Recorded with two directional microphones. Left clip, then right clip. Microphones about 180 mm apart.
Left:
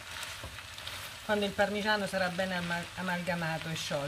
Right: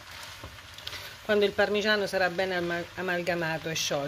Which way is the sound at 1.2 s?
40° right (ahead or behind).